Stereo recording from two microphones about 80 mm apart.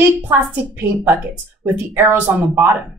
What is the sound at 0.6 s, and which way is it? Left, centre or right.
A woman's voice, right.